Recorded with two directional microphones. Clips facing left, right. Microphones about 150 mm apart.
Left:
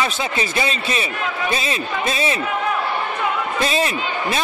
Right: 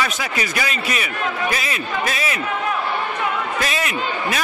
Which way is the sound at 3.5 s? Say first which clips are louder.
Left 3 dB; 30° left (ahead or behind).